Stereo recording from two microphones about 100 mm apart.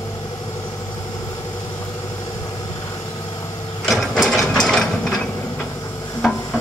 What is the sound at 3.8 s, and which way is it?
Gears, centre (ahead or behind).